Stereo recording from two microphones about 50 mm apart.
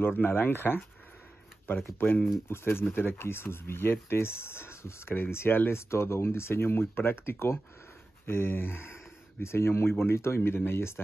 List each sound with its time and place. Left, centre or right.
0.2 s speech: left
2.0 s speech: left